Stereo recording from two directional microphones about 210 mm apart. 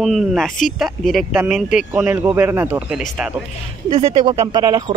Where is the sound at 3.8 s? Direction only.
30° right (ahead or behind).